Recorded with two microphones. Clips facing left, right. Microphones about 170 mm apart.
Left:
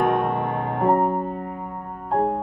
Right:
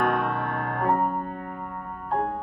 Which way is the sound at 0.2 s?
20° left (ahead or behind).